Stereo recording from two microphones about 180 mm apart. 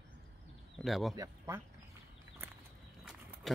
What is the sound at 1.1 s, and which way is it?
Speech, 15° right (ahead or behind).